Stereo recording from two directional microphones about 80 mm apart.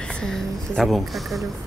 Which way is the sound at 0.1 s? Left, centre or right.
Centre.